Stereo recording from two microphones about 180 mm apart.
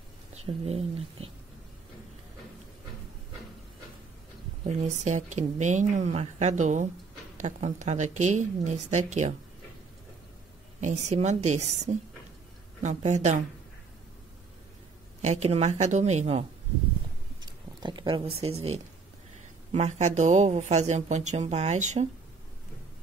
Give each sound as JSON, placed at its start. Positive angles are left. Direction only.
{"t": 0.3, "sound": "speech", "side_deg": -35}
{"t": 4.8, "sound": "speech", "side_deg": -40}
{"t": 10.8, "sound": "speech", "side_deg": -40}
{"t": 15.2, "sound": "speech", "side_deg": -35}
{"t": 17.4, "sound": "speech", "side_deg": -25}